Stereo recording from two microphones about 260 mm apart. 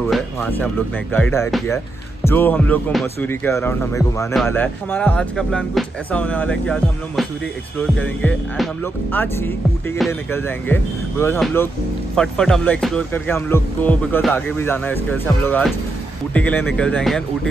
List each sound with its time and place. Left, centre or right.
0.1 s music: centre
1.1 s speech: centre